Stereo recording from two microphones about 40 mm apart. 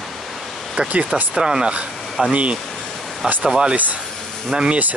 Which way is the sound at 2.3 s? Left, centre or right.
Right.